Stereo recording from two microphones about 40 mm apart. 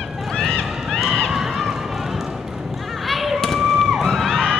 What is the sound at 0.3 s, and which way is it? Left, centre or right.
Run, centre.